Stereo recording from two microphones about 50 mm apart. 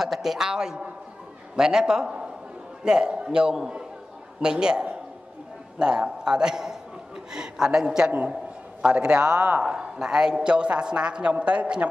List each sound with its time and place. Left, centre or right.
0.0 s a man's voice: centre